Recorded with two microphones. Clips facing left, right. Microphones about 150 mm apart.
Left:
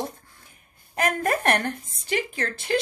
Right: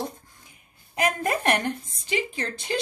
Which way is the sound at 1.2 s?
15° right (ahead or behind).